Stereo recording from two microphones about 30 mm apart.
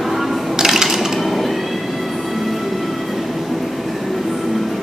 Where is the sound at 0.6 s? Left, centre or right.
Centre.